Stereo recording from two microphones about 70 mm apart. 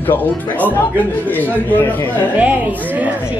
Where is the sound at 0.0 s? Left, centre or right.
Left.